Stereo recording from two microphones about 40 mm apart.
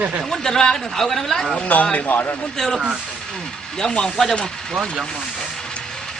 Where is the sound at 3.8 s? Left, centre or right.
Centre.